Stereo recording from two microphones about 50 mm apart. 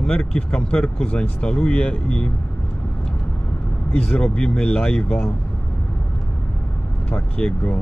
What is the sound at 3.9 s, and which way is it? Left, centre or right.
Speech, centre.